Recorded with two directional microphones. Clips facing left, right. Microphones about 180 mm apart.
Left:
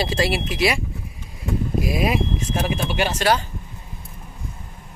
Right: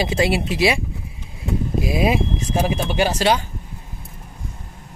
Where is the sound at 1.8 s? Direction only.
25° right (ahead or behind).